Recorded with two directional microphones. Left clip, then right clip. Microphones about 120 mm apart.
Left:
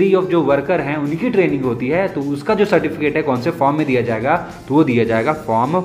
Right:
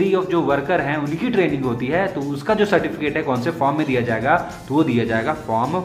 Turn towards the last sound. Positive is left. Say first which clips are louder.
# left 4 dB
turn(degrees=35)  # may be behind; listen again after turning